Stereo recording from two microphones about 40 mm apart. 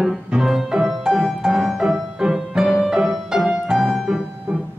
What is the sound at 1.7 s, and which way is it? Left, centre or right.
Music, centre.